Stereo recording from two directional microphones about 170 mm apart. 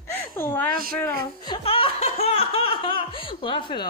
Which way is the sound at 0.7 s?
60° right (ahead or behind).